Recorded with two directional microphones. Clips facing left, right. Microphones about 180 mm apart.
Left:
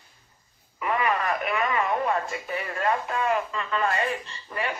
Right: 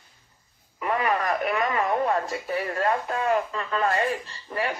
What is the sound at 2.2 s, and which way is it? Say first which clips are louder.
Speech: right 3 dB; 35° right (ahead or behind).